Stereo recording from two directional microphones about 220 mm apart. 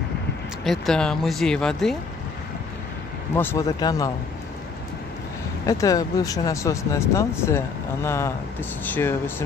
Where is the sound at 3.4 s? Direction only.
10° left (ahead or behind).